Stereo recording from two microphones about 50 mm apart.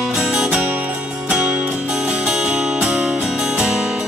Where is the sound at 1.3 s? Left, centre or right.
Centre.